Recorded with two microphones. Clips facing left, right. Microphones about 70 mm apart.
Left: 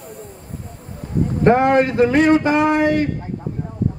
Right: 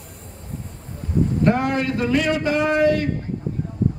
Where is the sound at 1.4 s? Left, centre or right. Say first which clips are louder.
Left 8 dB; left.